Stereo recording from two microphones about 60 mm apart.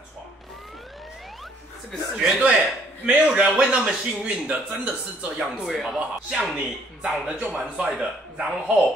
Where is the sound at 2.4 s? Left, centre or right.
Right.